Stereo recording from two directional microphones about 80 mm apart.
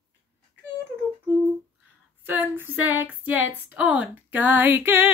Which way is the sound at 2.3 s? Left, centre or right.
Right.